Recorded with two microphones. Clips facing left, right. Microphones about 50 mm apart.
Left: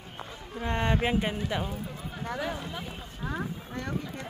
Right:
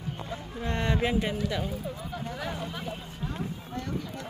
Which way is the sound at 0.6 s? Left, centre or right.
Left.